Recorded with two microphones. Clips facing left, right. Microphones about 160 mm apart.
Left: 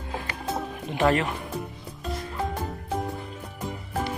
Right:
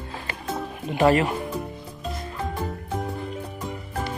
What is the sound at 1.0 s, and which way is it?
Speech, 5° right (ahead or behind).